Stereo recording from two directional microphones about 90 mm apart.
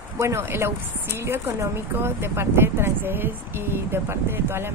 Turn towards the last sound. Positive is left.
turn(degrees=-25)  # may be behind; listen again after turning